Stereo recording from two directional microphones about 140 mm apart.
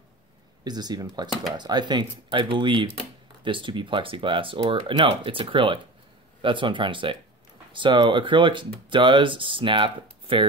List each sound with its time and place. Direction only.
0.7 s speech: 30° right (ahead or behind)